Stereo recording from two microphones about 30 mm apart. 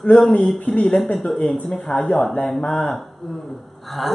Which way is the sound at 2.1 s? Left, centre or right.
Left.